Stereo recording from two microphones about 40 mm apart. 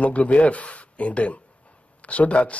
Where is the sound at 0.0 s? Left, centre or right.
Left.